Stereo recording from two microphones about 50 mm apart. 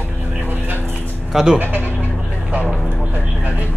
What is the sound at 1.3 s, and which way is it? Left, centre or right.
Speech, centre.